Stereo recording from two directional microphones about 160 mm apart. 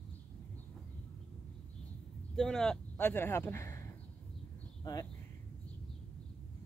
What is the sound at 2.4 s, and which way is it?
Speech, centre (ahead or behind).